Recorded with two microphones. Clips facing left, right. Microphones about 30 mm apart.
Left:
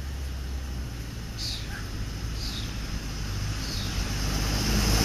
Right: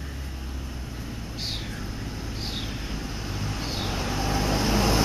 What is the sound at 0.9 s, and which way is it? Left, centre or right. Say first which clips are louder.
Vehicle: right 5 dB; centre.